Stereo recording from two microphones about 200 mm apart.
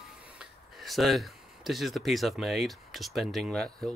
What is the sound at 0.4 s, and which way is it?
Speech, centre (ahead or behind).